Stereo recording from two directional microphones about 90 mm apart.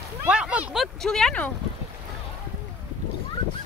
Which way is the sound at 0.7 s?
5° left (ahead or behind).